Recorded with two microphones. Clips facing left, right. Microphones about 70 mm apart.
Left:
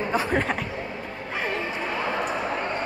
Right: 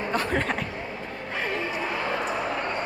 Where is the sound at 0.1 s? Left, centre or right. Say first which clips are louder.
Left 1 dB; centre.